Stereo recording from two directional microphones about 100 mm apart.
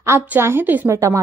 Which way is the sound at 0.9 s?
30° right (ahead or behind).